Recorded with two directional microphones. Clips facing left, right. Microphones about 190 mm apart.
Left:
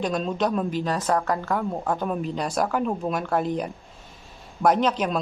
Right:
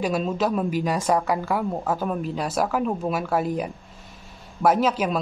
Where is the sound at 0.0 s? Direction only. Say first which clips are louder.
Right 1 dB; 5° right (ahead or behind).